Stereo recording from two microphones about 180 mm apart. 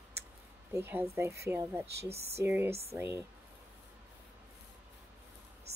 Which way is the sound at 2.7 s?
35° right (ahead or behind).